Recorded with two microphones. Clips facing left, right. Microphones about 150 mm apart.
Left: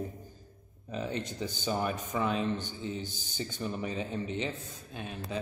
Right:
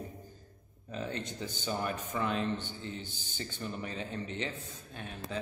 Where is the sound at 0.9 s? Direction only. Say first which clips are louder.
Left 3 dB; 15° left (ahead or behind).